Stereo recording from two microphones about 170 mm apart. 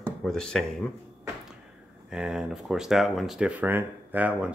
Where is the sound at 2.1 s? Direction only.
5° right (ahead or behind).